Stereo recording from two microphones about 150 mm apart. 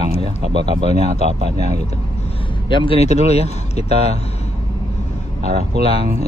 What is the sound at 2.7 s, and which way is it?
Speech, 35° left (ahead or behind).